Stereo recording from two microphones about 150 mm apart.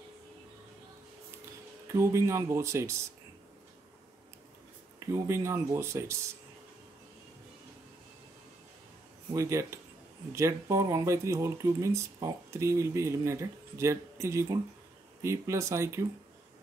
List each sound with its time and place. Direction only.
2.0 s speech: 20° right (ahead or behind)
5.0 s speech: 20° right (ahead or behind)
9.3 s speech: 20° right (ahead or behind)